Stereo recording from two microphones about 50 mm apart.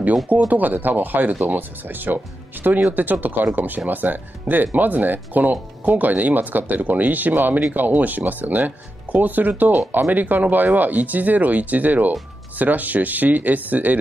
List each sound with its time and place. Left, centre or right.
0.5 s speech: right